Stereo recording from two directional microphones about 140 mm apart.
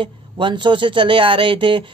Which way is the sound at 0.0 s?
35° right (ahead or behind).